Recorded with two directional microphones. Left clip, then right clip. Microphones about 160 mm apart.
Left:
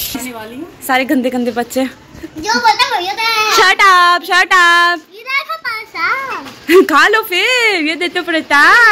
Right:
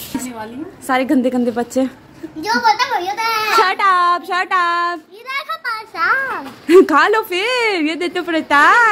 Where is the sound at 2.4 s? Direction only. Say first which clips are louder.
Left 3 dB; 10° left (ahead or behind).